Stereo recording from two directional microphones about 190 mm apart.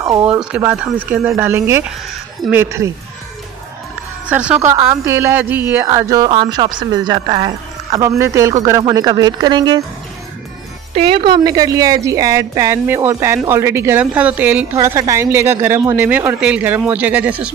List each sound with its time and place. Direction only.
0.0 s speech: 20° right (ahead or behind)
0.4 s a woman's voice: 10° right (ahead or behind)
4.3 s a woman's voice: 5° right (ahead or behind); by 9.8 s 25° right (ahead or behind)
11.0 s a woman's voice: 30° right (ahead or behind); by 17.5 s 5° right (ahead or behind)